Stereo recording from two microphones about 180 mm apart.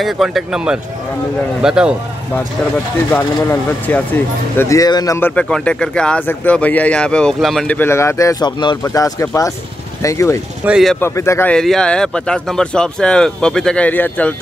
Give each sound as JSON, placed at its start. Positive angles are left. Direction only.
{"t": 0.0, "sound": "speech", "side_deg": 0}
{"t": 3.1, "sound": "speech", "side_deg": 10}
{"t": 5.3, "sound": "speech", "side_deg": 5}
{"t": 10.6, "sound": "speech", "side_deg": -5}
{"t": 11.0, "sound": "speech", "side_deg": 15}